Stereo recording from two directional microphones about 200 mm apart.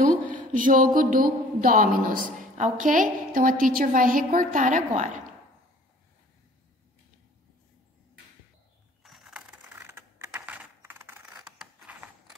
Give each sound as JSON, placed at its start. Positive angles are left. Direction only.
{"t": 0.3, "sound": "speech", "side_deg": -40}
{"t": 9.0, "sound": "mechanisms", "side_deg": 0}